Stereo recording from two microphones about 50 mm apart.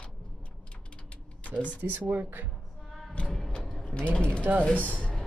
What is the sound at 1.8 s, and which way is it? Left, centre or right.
Speech, right.